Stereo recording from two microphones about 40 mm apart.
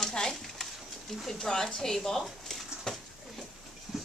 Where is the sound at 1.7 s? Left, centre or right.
Centre.